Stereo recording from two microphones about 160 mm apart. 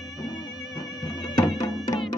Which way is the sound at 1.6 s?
25° left (ahead or behind).